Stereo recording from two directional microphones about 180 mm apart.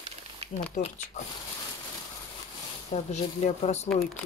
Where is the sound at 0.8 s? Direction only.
40° left (ahead or behind).